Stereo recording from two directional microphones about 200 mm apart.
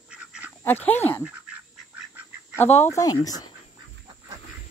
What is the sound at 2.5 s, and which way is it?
Speech, 10° left (ahead or behind).